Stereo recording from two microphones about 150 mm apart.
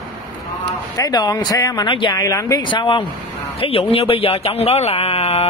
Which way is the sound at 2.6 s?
35° left (ahead or behind).